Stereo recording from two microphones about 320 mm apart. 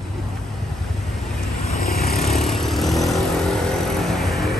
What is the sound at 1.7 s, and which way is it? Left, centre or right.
Vehicle, left.